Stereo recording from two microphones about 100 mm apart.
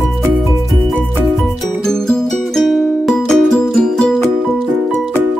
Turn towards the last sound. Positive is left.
turn(degrees=10)  # may be behind; listen again after turning